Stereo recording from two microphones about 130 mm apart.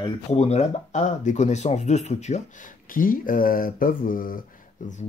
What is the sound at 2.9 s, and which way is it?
Speech, 90° left.